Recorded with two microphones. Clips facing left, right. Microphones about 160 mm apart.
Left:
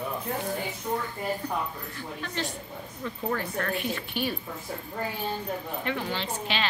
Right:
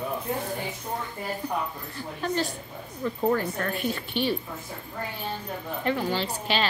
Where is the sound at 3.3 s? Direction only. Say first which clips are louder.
Right 1 dB; 40° right (ahead or behind).